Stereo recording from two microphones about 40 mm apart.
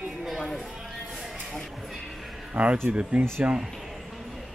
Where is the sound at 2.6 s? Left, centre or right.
Right.